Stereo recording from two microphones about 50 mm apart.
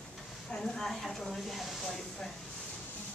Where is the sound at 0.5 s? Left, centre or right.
Centre.